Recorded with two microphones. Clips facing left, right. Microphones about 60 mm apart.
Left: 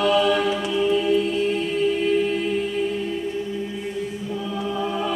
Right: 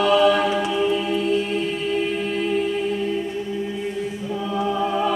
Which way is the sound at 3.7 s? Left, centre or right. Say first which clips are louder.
Right 2 dB; centre.